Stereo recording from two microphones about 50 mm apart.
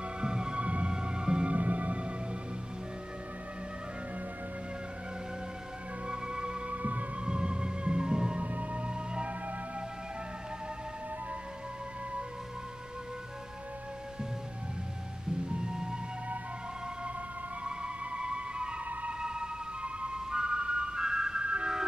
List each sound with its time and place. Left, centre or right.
0.2 s music: centre
6.0 s organ: centre
6.7 s music: right
7.2 s music: centre
8.4 s music: right
15.4 s music: centre
17.6 s music: centre